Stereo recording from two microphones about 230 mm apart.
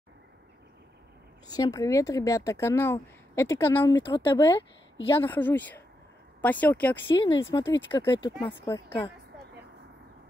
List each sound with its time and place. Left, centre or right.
1.5 s speech: centre
4.2 s speech: left
5.2 s speech: centre
7.1 s speech: left